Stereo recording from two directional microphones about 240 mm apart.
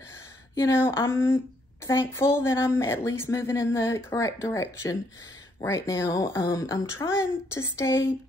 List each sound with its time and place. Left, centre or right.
0.6 s speech: centre